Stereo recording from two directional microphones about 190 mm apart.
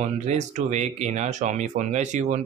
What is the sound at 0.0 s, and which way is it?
Speech, 40° right (ahead or behind).